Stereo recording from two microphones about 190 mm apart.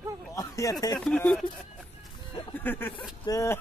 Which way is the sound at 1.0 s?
5° left (ahead or behind).